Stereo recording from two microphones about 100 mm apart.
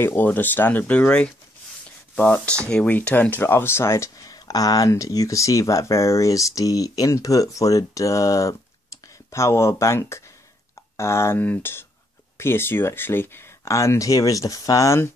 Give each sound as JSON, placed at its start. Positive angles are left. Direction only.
{"t": 0.0, "sound": "speech", "side_deg": 20}